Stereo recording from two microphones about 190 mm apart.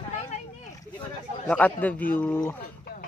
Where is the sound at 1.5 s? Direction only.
10° left (ahead or behind).